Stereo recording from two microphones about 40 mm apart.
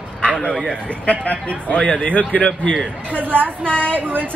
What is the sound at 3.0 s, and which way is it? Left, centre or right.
Speech, right.